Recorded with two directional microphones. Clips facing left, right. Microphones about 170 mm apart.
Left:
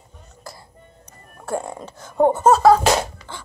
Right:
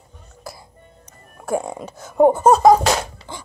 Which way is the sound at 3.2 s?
30° right (ahead or behind).